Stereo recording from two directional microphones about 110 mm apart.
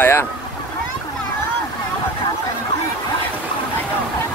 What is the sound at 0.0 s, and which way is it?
Vehicle, 20° left (ahead or behind).